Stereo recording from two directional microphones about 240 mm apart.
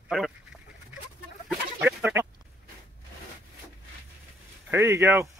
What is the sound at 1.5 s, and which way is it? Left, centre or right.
Chicken, centre.